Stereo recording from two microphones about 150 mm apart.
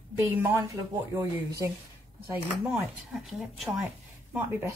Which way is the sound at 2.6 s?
5° right (ahead or behind).